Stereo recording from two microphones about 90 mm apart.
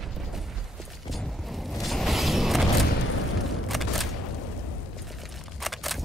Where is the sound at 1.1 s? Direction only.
Centre (ahead or behind).